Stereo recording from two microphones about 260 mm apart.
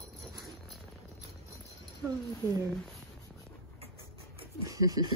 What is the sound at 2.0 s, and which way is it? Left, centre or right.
Speech, centre.